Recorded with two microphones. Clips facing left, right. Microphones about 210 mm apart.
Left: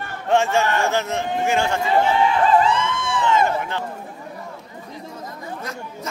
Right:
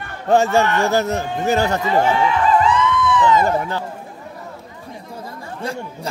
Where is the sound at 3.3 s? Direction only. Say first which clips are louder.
Right 3 dB; 35° right (ahead or behind).